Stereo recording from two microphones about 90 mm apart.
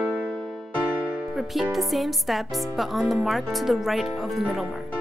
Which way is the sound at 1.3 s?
Centre (ahead or behind).